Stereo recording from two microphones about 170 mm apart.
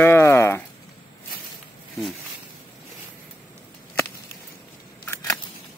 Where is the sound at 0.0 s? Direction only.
15° left (ahead or behind).